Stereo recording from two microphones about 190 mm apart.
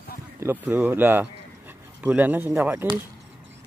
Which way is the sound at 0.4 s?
10° right (ahead or behind).